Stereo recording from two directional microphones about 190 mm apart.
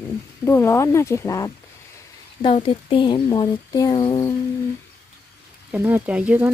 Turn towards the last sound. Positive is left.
turn(degrees=-10)  # may be behind; listen again after turning